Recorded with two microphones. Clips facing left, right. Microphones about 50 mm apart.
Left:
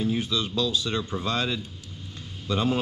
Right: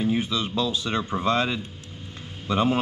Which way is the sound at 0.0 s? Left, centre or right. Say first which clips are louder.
Right 2 dB; right.